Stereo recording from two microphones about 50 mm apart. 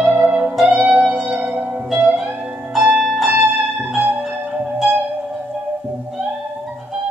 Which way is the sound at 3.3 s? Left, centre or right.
Right.